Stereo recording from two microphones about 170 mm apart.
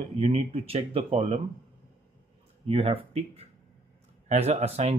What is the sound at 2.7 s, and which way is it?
Speech, 35° right (ahead or behind).